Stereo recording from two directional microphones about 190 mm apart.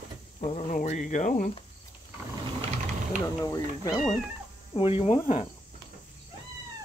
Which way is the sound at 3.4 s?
20° left (ahead or behind).